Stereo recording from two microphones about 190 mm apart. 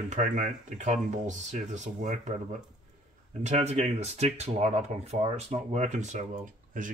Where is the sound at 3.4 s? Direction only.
35° right (ahead or behind).